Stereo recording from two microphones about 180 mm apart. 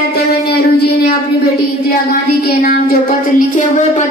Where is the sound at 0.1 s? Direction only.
65° left (ahead or behind).